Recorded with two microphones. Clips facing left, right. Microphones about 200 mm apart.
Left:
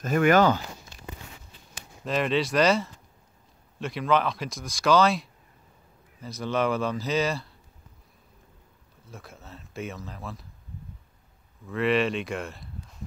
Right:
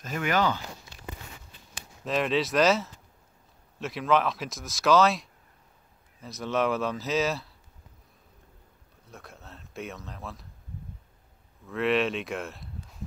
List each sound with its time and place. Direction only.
0.0 s speech: 55° left (ahead or behind)
2.0 s speech: centre (ahead or behind)
9.0 s speech: centre (ahead or behind)
11.6 s speech: centre (ahead or behind)